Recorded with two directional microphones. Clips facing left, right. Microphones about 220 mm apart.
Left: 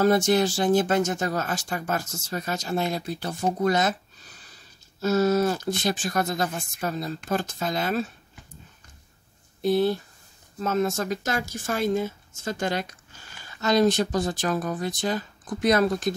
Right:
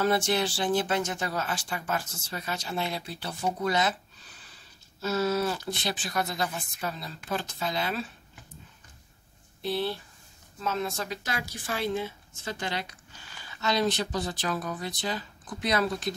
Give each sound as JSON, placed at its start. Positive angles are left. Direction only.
{"t": 0.0, "sound": "speech", "side_deg": 45}
{"t": 9.6, "sound": "speech", "side_deg": 45}